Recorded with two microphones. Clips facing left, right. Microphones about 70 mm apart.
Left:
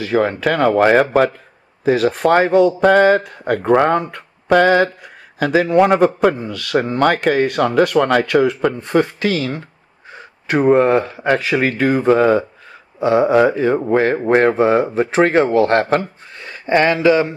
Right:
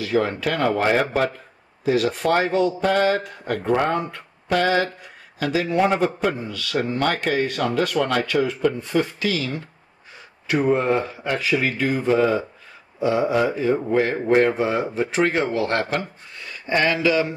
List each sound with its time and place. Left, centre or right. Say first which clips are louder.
0.0 s speech: left 5 dB; left
4.1 s mantra: left 8 dB; left
5.4 s speech: left 7 dB; left
8.5 s speech: left 5 dB; left
13.7 s a man's voice: left 5 dB; left